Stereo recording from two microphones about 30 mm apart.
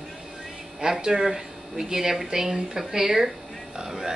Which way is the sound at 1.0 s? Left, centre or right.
Right.